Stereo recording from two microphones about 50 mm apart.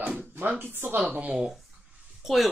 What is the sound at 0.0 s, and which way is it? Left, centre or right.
Music, right.